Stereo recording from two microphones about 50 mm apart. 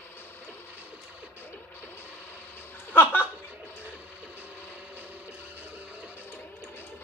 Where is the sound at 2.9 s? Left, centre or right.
Left.